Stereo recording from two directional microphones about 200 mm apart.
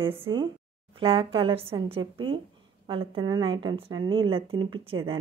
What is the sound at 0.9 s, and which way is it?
Speech, 25° right (ahead or behind).